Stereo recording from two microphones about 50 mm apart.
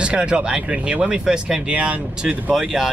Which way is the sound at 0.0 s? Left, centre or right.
Centre.